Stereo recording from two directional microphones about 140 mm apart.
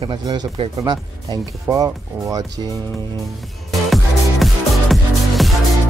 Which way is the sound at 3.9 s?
Centre (ahead or behind).